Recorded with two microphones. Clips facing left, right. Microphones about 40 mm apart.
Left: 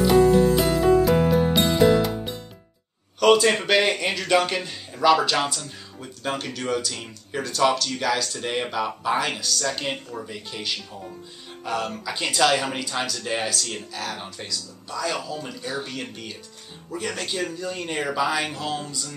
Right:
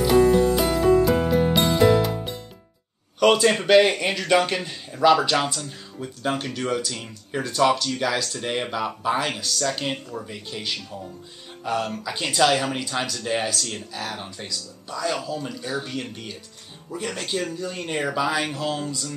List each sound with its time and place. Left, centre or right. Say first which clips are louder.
0.6 s music: even; centre
3.2 s speech: even; centre
8.1 s speech: left 1 dB; centre